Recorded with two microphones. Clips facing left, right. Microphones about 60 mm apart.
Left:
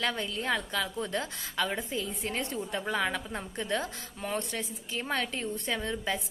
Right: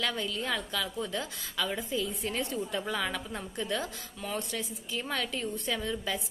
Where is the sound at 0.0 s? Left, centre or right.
Left.